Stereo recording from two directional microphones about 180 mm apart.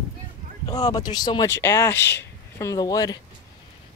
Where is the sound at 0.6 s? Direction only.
25° left (ahead or behind).